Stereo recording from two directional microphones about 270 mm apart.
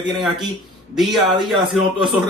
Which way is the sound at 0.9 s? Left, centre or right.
Centre.